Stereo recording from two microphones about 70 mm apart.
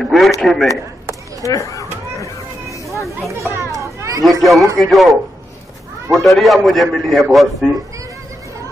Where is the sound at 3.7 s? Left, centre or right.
Right.